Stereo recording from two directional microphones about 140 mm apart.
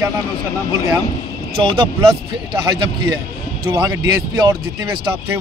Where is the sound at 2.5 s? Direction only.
30° right (ahead or behind).